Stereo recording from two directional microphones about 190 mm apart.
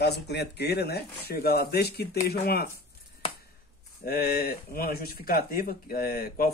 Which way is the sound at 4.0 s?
55° left (ahead or behind).